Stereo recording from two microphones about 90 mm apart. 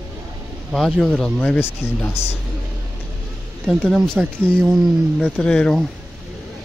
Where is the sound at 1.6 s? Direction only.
25° left (ahead or behind).